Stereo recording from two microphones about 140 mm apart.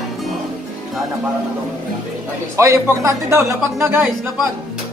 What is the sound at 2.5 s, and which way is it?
Speech, 20° right (ahead or behind).